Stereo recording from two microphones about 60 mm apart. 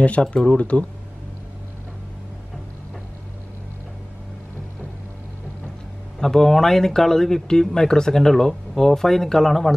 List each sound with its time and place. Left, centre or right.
0.0 s speech: centre
6.1 s speech: centre